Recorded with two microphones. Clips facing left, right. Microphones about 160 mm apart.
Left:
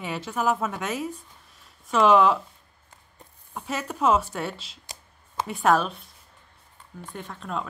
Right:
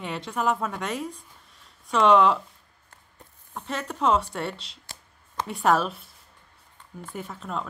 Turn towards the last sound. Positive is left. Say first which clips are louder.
# even
turn(degrees=0)  # may be behind; listen again after turning